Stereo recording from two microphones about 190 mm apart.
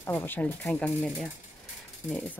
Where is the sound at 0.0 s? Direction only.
10° left (ahead or behind).